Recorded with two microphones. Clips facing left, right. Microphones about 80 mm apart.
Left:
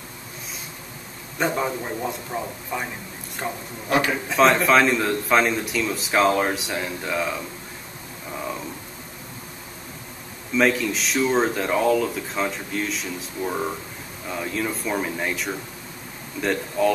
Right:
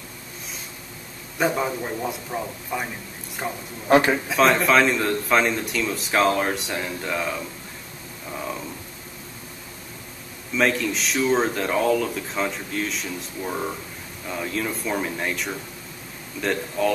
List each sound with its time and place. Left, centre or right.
1.4 s speech: centre
8.3 s a sound: centre
10.5 s speech: centre